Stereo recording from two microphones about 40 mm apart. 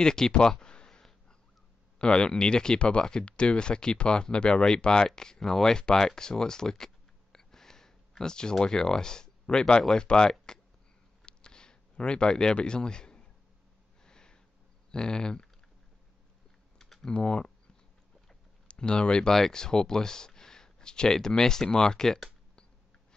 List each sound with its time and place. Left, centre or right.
0.0 s speech: centre
0.5 s a sound: centre
2.0 s speech: left
7.3 s a sound: centre
9.9 s speech: centre
11.2 s a sound: centre
12.5 s speech: left
14.0 s sniff: centre
14.9 s speech: left
17.0 s speech: left
18.7 s speech: left